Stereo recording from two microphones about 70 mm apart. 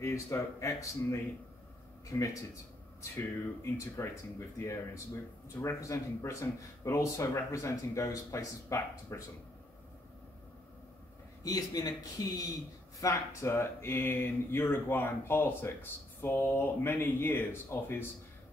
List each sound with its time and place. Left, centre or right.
0.0 s a man's voice: left
3.0 s speech: left
11.4 s a man's voice: left
13.0 s speech: left